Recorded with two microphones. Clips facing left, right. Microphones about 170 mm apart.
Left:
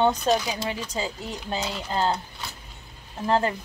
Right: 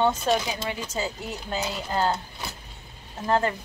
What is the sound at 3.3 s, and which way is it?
Female singing, 20° left (ahead or behind).